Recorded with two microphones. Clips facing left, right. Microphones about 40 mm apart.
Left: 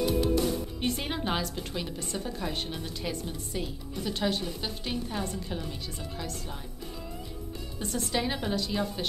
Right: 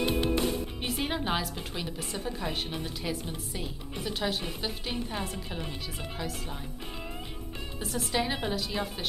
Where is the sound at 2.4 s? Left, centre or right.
Centre.